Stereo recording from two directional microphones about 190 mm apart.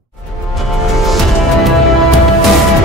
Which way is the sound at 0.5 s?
Centre (ahead or behind).